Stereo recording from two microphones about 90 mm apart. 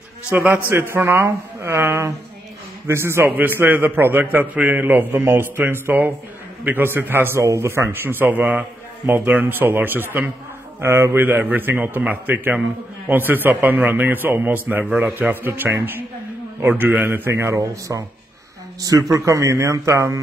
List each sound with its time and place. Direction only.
0.3 s a man's voice: 20° right (ahead or behind)
11.2 s a man's voice: 20° right (ahead or behind)